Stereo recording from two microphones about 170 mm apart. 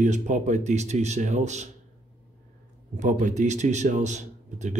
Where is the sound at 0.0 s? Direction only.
45° right (ahead or behind).